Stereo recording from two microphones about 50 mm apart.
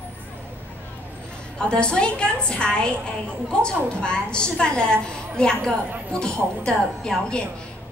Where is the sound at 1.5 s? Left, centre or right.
Centre.